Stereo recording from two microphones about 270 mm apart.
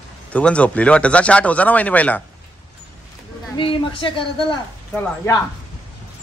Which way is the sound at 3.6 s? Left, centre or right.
Centre.